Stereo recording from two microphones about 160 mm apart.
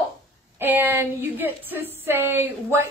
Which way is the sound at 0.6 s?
15° right (ahead or behind).